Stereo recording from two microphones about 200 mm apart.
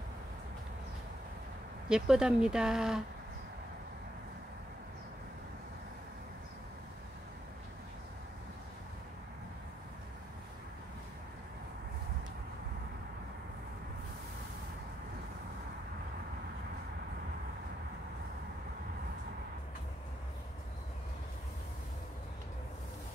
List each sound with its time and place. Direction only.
1.9 s speech: 5° right (ahead or behind)